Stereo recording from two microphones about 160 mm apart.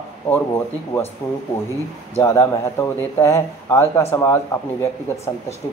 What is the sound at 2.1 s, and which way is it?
A man's voice, 15° left (ahead or behind).